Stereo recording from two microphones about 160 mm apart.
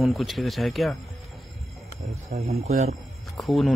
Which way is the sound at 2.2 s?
45° right (ahead or behind).